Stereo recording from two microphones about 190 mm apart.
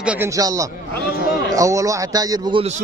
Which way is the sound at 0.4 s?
20° right (ahead or behind).